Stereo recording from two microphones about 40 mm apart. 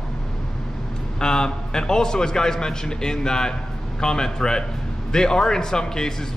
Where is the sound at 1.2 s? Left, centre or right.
Centre.